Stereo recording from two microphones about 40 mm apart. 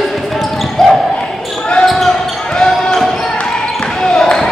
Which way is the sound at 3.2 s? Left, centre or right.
Left.